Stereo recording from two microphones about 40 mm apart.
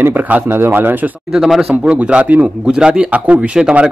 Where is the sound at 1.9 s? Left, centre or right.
Right.